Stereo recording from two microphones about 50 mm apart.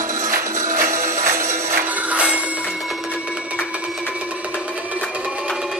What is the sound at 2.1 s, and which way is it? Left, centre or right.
Music, right.